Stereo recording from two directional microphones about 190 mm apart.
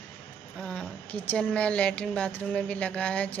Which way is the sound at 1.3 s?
5° left (ahead or behind).